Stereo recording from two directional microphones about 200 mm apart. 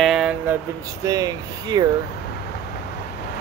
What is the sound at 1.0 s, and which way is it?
Speech, 20° right (ahead or behind).